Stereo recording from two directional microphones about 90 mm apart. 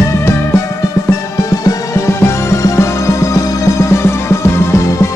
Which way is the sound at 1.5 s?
35° left (ahead or behind).